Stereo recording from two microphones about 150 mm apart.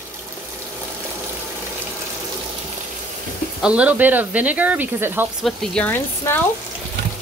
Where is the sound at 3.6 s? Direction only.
10° right (ahead or behind).